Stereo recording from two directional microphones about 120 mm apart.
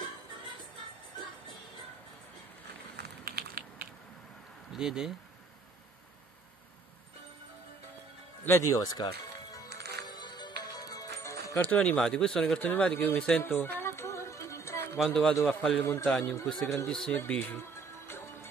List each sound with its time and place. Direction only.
4.7 s speech: 5° right (ahead or behind)
8.5 s speech: 25° left (ahead or behind)
10.0 s music: 35° left (ahead or behind)
11.6 s speech: 15° left (ahead or behind)
15.0 s speech: 5° left (ahead or behind)
15.8 s a man's voice: 20° left (ahead or behind)
16.8 s speech: 10° left (ahead or behind)
17.3 s music: 15° left (ahead or behind)